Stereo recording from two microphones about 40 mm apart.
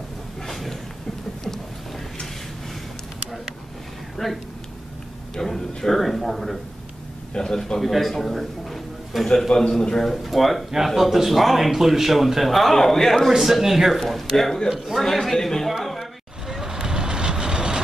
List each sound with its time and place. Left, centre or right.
0.5 s a sound: centre
4.2 s speech: centre
5.3 s a sound: centre
7.3 s a man's voice: centre
7.8 s a man's voice: centre
9.6 s a man's voice: centre
9.9 s speech: centre
13.4 s speech: centre
13.9 s speech: centre
14.7 s speech: centre
15.0 s a man's voice: centre
15.7 s a sound: centre
16.4 s vehicle: centre